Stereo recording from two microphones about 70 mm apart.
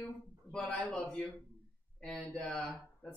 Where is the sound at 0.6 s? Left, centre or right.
Left.